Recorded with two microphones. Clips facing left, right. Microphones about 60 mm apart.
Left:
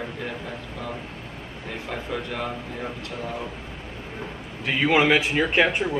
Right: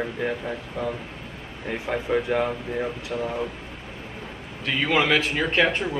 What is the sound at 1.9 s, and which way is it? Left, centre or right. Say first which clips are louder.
Speech: right 8 dB; right.